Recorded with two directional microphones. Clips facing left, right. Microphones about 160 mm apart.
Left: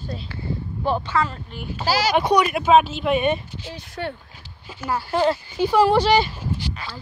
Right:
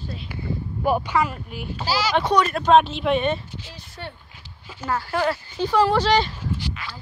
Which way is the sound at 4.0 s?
60° left (ahead or behind).